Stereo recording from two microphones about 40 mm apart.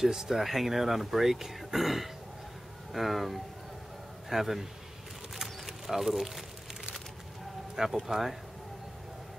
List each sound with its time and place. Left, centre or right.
0.0 s speech: centre
5.4 s a sound: centre
7.7 s speech: centre